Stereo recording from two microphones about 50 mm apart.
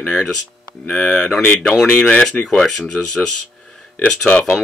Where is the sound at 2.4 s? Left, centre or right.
Centre.